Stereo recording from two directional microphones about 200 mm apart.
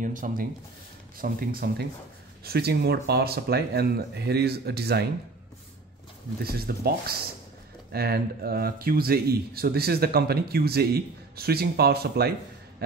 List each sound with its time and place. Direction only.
0.0 s speech: 40° right (ahead or behind)
6.4 s speech: 50° right (ahead or behind)